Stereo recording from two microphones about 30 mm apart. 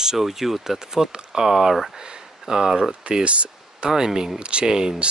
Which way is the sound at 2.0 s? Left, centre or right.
Right.